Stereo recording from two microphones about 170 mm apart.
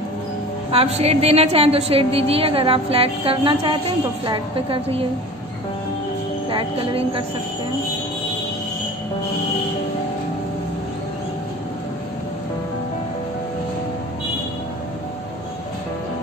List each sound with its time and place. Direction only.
0.7 s a woman's voice: 35° right (ahead or behind)
6.5 s a woman's voice: 30° right (ahead or behind)